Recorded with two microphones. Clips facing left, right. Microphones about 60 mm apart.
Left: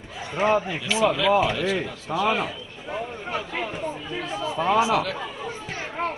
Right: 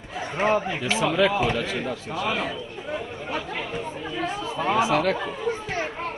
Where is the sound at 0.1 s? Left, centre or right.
Right.